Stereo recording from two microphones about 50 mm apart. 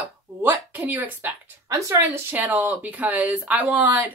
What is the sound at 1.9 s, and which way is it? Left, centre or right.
Speech, right.